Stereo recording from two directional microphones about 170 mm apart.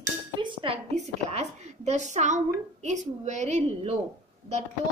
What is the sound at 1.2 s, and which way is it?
A woman's voice, 40° right (ahead or behind).